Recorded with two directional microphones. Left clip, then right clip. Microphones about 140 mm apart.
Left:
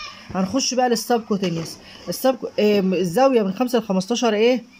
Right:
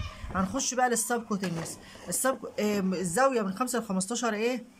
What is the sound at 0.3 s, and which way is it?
Speech, 30° left (ahead or behind).